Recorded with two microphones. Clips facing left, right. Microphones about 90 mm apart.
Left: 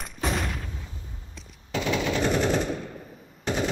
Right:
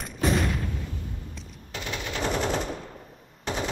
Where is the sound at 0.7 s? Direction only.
65° right (ahead or behind).